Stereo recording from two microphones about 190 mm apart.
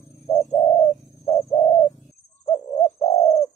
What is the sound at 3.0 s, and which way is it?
Bird, 30° left (ahead or behind).